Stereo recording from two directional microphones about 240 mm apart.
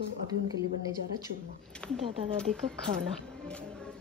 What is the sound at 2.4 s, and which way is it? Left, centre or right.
Speech, centre.